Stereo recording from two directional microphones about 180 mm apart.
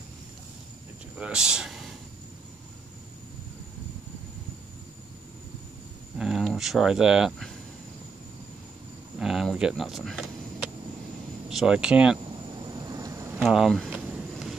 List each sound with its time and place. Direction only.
1.1 s speech: 5° right (ahead or behind)
6.1 s speech: centre (ahead or behind)
9.2 s speech: centre (ahead or behind)
11.4 s speech: 5° right (ahead or behind)
12.8 s a sound: 20° right (ahead or behind)
13.4 s speech: centre (ahead or behind)